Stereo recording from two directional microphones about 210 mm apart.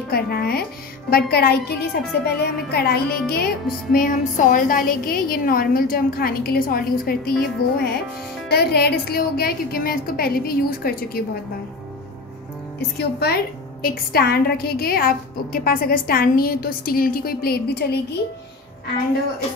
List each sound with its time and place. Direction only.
0.1 s a woman's voice: 45° left (ahead or behind)
12.9 s a woman's voice: 50° left (ahead or behind)